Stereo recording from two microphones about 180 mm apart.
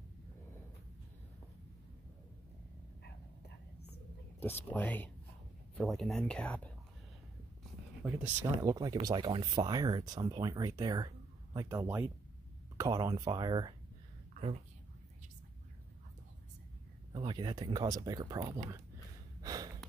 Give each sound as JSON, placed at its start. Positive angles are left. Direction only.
{"t": 4.4, "sound": "speech", "side_deg": 10}
{"t": 8.0, "sound": "speech", "side_deg": -5}
{"t": 8.5, "sound": "speech", "side_deg": -20}
{"t": 17.1, "sound": "speech", "side_deg": -25}
{"t": 19.4, "sound": "gasp", "side_deg": -20}